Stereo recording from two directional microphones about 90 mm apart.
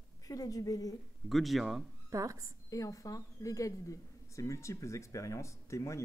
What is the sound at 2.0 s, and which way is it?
Speech, 35° right (ahead or behind).